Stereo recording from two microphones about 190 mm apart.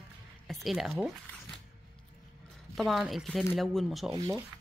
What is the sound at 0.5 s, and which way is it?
Speech, centre (ahead or behind).